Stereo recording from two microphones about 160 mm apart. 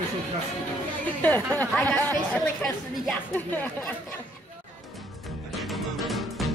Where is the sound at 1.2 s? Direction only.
10° left (ahead or behind).